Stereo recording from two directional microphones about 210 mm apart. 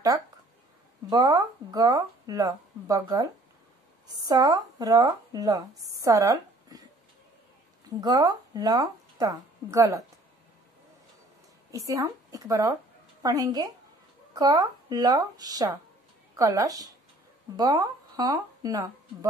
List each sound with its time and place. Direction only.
1.1 s speech: 15° right (ahead or behind)
8.0 s speech: 20° right (ahead or behind)
11.7 s speech: 15° right (ahead or behind)